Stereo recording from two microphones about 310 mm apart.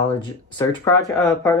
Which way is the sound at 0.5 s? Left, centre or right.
Centre.